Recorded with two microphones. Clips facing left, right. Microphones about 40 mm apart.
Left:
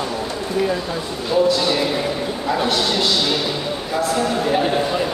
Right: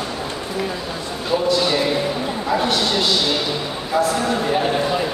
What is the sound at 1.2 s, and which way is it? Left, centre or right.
A man's voice, centre.